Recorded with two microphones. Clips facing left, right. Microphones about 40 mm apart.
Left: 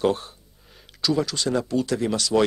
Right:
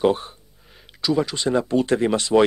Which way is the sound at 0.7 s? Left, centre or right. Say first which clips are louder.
Right 1 dB; centre.